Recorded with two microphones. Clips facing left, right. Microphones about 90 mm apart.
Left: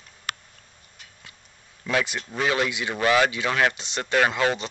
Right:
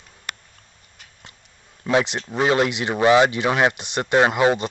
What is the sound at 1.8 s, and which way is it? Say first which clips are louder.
Speech: right 5 dB; 25° right (ahead or behind).